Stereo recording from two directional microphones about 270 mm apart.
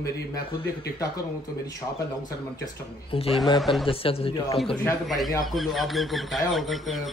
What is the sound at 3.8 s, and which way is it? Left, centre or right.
Speech, left.